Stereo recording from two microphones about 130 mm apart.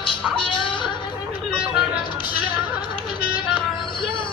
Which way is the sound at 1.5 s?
10° right (ahead or behind).